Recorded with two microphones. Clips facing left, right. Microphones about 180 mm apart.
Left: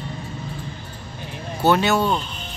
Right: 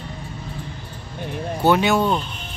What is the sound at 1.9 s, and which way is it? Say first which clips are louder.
Speech: right 1 dB; centre (ahead or behind).